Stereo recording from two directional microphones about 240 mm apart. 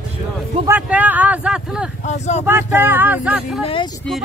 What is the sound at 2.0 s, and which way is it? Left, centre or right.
Speech, left.